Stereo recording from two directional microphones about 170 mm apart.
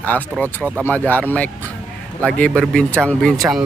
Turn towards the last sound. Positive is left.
turn(degrees=5)  # may be behind; listen again after turning